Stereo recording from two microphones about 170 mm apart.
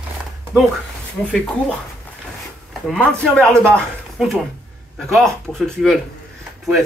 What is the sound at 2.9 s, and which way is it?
Speech, 5° left (ahead or behind).